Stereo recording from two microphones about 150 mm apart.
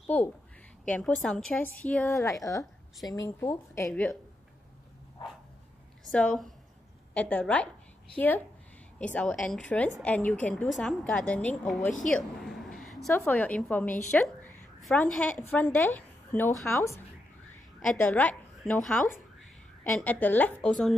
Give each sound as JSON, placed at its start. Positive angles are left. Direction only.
{"t": 0.8, "sound": "a woman's voice", "side_deg": 5}
{"t": 2.2, "sound": "speech", "side_deg": 20}
{"t": 6.1, "sound": "a woman's voice", "side_deg": 5}
{"t": 8.9, "sound": "a woman's voice", "side_deg": 10}
{"t": 12.4, "sound": "a sound", "side_deg": 0}
{"t": 13.1, "sound": "a woman's voice", "side_deg": 15}
{"t": 18.6, "sound": "a woman's voice", "side_deg": 0}